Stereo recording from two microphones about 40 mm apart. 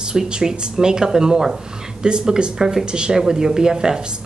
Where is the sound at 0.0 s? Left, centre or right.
Centre.